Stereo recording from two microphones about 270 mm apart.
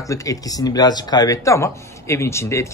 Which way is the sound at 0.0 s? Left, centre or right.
Centre.